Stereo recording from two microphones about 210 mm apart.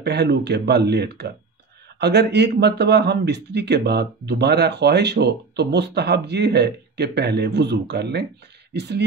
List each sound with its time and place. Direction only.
0.0 s speech: 50° right (ahead or behind)